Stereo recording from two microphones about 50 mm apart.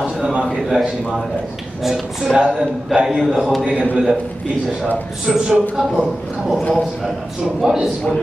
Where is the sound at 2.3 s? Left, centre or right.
Centre.